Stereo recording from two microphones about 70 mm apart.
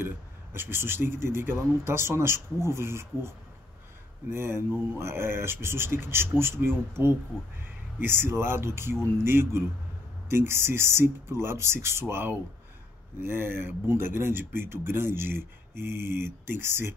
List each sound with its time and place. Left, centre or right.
0.0 s speech: right